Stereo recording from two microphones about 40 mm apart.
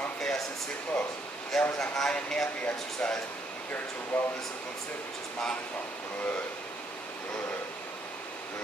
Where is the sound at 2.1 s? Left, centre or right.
Left.